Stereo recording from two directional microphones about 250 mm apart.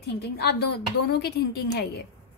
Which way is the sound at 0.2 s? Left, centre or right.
Left.